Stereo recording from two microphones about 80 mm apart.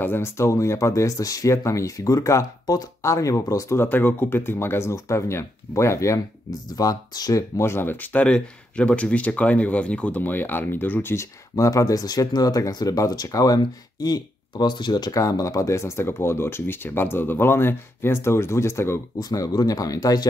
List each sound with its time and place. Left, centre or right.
0.0 s speech: left
11.5 s speech: left
15.1 s speech: left
19.1 s speech: left